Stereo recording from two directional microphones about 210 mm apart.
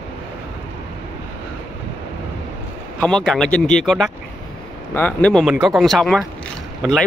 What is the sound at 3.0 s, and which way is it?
Speech, 5° left (ahead or behind).